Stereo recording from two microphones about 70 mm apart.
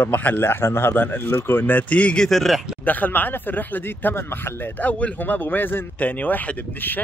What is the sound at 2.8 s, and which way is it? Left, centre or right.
Speech, left.